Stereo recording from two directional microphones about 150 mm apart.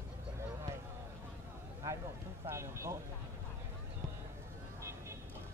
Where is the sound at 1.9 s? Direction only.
20° right (ahead or behind).